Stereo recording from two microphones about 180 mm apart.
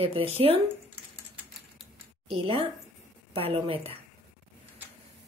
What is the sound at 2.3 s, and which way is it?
A woman's voice, 30° right (ahead or behind).